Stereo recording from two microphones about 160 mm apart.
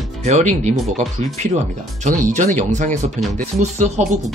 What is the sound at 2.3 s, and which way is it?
Speech, 50° right (ahead or behind).